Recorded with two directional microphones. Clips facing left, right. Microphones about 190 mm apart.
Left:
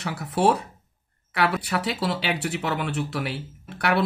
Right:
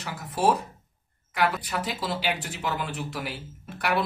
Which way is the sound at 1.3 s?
70° left (ahead or behind).